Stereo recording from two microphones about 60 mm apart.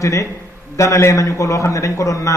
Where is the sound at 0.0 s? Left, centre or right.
Left.